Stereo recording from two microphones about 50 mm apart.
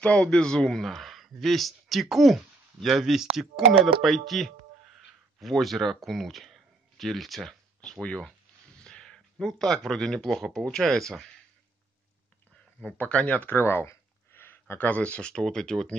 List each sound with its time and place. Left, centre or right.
0.0 s speech: centre
8.7 s speech: centre
13.1 s speech: left
13.6 s speech: left
14.3 s a sound: left
14.8 s speech: left
15.3 s speech: centre